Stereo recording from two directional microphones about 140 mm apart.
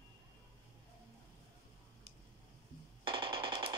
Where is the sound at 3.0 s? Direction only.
40° right (ahead or behind).